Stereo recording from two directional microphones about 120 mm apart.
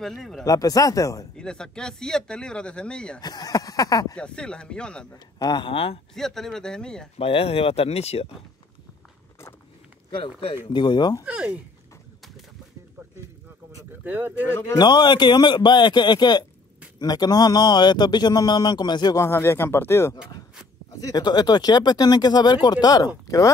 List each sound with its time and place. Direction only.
0.0 s speech: centre (ahead or behind)
0.5 s speech: 30° left (ahead or behind)
1.3 s speech: 5° left (ahead or behind)
3.2 s speech: 35° left (ahead or behind)
4.2 s speech: 10° left (ahead or behind)
5.1 s speech: 35° left (ahead or behind)
6.1 s speech: 5° left (ahead or behind)
7.2 s speech: 50° left (ahead or behind)
10.7 s speech: 40° left (ahead or behind)
11.2 s speech: 10° right (ahead or behind)
14.0 s speech: 15° right (ahead or behind)
14.8 s speech: 40° left (ahead or behind)
19.1 s speech: 20° left (ahead or behind)
21.0 s speech: 35° left (ahead or behind)